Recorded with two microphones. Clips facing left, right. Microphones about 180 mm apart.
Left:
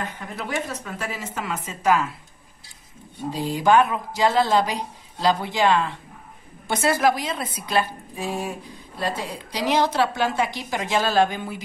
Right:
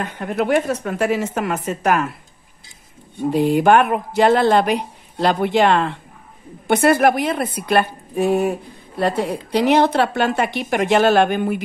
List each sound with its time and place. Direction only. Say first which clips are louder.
0.0 s a woman's voice: right 10 dB; 60° right (ahead or behind)
3.2 s a woman's voice: right 10 dB; 60° right (ahead or behind)